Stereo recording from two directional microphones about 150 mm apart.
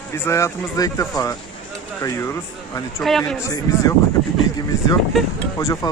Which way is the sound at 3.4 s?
25° left (ahead or behind).